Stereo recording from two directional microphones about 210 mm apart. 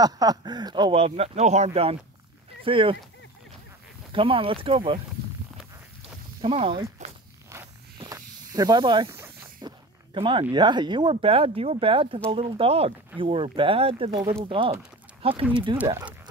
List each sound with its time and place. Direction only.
0.0 s speech: 20° right (ahead or behind)
4.1 s speech: 25° right (ahead or behind)
6.4 s speech: 25° right (ahead or behind)
7.0 s walk: 35° right (ahead or behind)
7.5 s walk: 15° right (ahead or behind)
8.5 s speech: 20° right (ahead or behind)
9.1 s snake: 15° right (ahead or behind)
10.5 s speech: 20° right (ahead or behind)
15.8 s speech: 10° right (ahead or behind)